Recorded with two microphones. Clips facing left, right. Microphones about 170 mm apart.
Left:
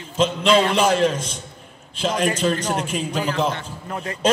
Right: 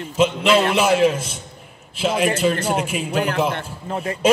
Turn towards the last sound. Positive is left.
turn(degrees=-30)  # may be behind; listen again after turning